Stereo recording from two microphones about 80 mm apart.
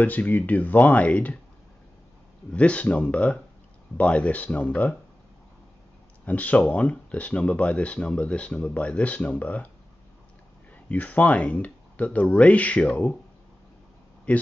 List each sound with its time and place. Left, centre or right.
0.0 s speech: left
2.5 s speech: centre
6.2 s speech: centre
10.9 s speech: centre
14.3 s speech: centre